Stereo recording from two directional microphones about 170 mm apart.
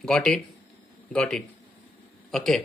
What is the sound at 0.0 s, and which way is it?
Speech, 5° left (ahead or behind).